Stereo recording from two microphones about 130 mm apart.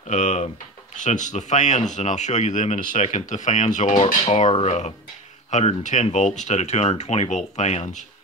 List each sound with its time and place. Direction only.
0.1 s speech: 65° left (ahead or behind)
4.0 s speech: 55° left (ahead or behind)